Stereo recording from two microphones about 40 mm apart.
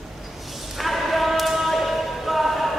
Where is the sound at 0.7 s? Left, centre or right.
Centre.